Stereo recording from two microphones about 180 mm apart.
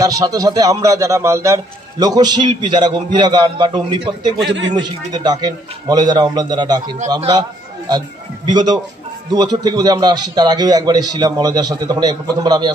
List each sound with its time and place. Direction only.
0.0 s a man's voice: 20° right (ahead or behind)
4.5 s a man's voice: 90° right
4.7 s a man's voice: 25° right (ahead or behind)
8.5 s a man's voice: 25° right (ahead or behind)